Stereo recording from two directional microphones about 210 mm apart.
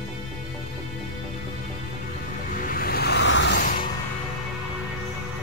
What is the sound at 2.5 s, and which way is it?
Music, 40° left (ahead or behind).